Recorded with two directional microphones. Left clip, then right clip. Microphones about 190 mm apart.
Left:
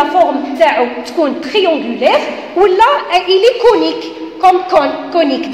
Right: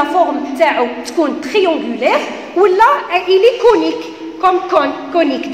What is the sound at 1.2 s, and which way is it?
A woman's voice, 15° right (ahead or behind).